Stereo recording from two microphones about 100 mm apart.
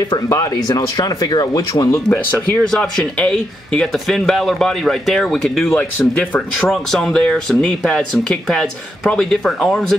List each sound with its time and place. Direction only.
0.1 s speech: 35° left (ahead or behind)
2.0 s speech: 10° left (ahead or behind)